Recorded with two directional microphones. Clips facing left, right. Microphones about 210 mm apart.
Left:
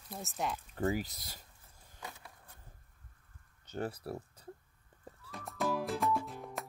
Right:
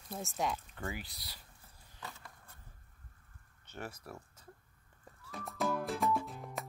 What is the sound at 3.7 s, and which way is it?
Speech, 35° left (ahead or behind).